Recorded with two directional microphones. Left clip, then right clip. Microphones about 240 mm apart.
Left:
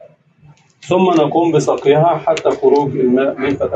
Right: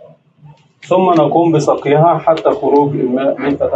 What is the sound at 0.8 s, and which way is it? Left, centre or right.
Speech, left.